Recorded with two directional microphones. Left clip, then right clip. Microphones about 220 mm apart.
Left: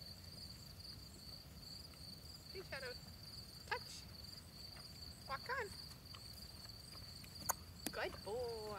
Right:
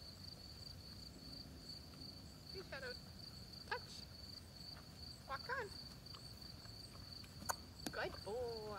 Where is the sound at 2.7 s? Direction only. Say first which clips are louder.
Left 1 dB; centre (ahead or behind).